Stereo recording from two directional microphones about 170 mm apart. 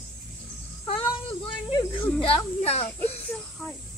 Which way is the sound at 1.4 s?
30° left (ahead or behind).